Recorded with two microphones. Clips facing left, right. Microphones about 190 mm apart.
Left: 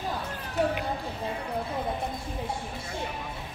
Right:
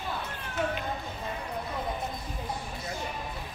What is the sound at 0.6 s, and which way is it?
Run, 35° left (ahead or behind).